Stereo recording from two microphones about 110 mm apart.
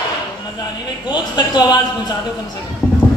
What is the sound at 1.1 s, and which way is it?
Speech, 40° left (ahead or behind).